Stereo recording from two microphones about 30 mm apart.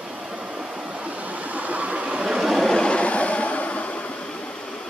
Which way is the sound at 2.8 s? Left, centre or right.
Left.